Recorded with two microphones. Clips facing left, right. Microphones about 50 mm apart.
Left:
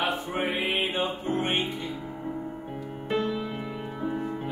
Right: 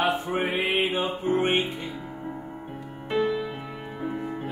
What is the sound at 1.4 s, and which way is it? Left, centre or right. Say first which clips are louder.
Music: right 3 dB; right.